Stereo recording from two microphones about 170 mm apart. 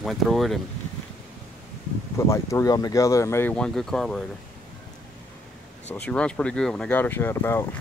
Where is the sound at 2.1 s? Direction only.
15° left (ahead or behind).